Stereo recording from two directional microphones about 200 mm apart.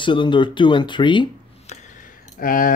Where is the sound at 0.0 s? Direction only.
25° left (ahead or behind).